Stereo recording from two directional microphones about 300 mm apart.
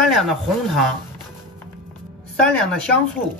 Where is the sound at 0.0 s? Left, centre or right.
Centre.